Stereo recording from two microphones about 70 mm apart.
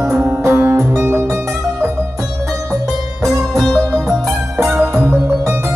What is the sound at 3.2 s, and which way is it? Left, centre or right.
Music, centre.